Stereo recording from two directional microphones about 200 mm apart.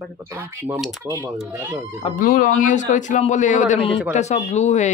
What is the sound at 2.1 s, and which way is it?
A man's voice, 45° left (ahead or behind).